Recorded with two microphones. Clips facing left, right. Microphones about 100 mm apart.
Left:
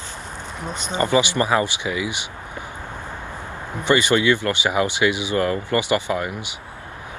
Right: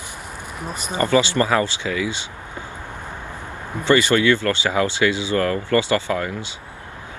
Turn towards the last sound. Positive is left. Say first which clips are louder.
# right 1 dB
turn(degrees=15)  # may be behind; listen again after turning